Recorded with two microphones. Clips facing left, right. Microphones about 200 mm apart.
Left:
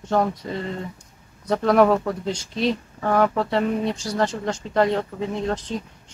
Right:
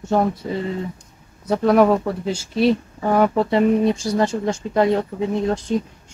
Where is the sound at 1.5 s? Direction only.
5° right (ahead or behind).